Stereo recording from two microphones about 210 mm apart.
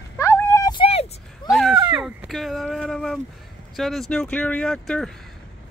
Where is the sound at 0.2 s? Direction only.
10° left (ahead or behind); by 1.5 s 30° left (ahead or behind).